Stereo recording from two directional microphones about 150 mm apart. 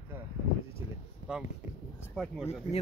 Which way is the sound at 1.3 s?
5° right (ahead or behind).